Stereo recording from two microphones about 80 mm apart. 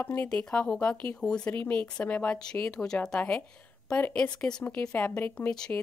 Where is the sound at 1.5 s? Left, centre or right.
Left.